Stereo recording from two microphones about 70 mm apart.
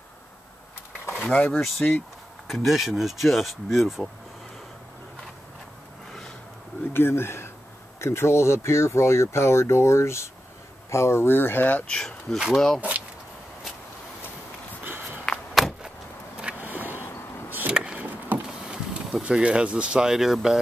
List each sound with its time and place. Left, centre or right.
1.1 s speech: left
1.6 s speech: centre
6.9 s speech: left
11.9 s speech: centre
14.9 s a sound: right
15.2 s a sound: centre
16.5 s vehicle: right
17.5 s chop: right
17.9 s vehicle: right
19.2 s speech: centre